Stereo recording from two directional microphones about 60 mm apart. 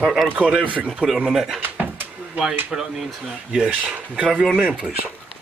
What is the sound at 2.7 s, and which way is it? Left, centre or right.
Speech, centre.